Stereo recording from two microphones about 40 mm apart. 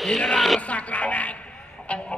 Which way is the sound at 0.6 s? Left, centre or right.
Left.